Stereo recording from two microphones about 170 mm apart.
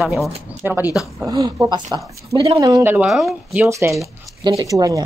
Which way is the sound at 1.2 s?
20° right (ahead or behind).